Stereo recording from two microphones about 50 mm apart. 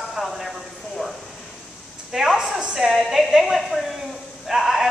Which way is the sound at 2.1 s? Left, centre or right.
Centre.